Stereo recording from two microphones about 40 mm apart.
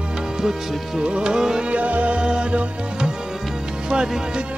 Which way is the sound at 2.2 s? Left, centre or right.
Right.